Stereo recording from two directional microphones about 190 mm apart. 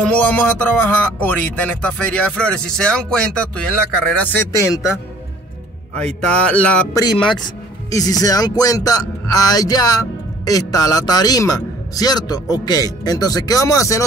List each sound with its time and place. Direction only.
0.1 s speech: 5° left (ahead or behind)
5.9 s speech: 5° left (ahead or behind)
7.9 s speech: 20° left (ahead or behind)